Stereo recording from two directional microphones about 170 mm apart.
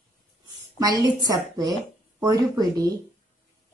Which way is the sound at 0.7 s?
20° right (ahead or behind).